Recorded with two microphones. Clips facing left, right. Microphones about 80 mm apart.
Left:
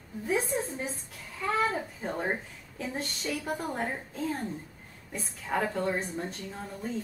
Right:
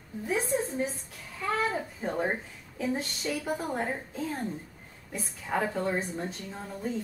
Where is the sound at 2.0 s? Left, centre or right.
Centre.